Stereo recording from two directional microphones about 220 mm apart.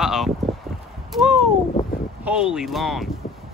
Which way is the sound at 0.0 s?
Centre (ahead or behind).